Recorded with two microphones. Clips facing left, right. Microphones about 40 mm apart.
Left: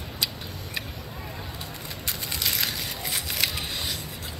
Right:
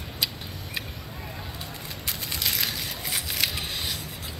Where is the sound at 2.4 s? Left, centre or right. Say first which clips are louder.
Even; centre.